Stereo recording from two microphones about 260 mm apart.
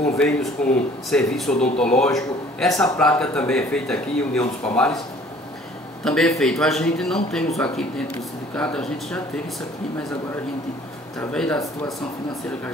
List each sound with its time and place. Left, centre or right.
0.0 s speech: centre
6.0 s speech: centre
11.1 s speech: centre